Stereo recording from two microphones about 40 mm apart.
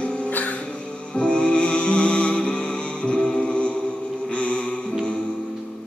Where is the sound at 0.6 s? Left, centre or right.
Left.